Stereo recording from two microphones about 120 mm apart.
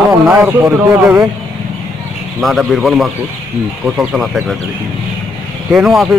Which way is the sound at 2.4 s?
Centre (ahead or behind).